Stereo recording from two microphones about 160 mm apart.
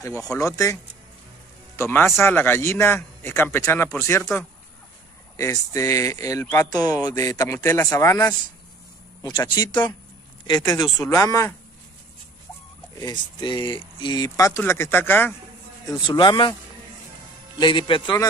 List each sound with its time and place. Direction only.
0.3 s speech: 20° left (ahead or behind)
1.8 s a man's voice: 15° left (ahead or behind)
12.9 s speech: 25° left (ahead or behind)
15.9 s speech: 30° left (ahead or behind)
17.6 s a man's voice: 30° left (ahead or behind)